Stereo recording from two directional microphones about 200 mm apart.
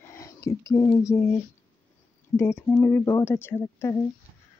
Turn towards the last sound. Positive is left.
turn(degrees=10)  # may be behind; listen again after turning